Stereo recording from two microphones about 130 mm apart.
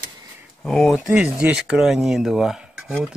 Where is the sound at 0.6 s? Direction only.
5° left (ahead or behind).